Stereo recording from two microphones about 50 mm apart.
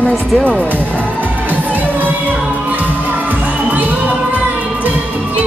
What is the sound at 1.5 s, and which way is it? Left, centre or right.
Music, right.